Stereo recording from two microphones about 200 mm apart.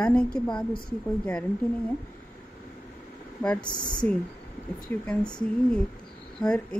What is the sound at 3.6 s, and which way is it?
Speech, 20° left (ahead or behind).